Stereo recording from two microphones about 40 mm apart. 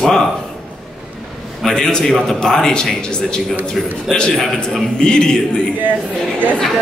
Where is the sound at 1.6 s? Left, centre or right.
Centre.